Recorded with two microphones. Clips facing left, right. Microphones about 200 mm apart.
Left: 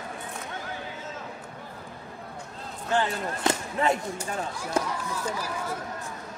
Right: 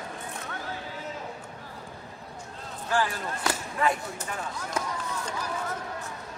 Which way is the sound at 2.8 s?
25° left (ahead or behind).